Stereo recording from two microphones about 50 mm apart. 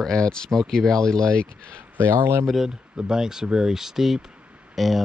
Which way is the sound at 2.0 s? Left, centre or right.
Right.